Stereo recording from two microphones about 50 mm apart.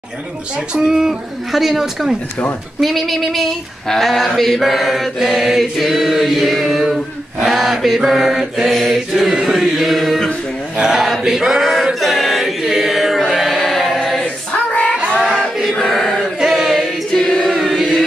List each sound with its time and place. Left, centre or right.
0.7 s chant: centre
10.8 s a sound: centre
11.7 s chant: centre
14.7 s music: left
15.0 s music: centre
15.8 s a sound: centre
16.3 s choir: centre
17.5 s chant: centre